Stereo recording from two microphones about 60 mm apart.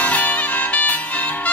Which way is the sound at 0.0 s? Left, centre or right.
Left.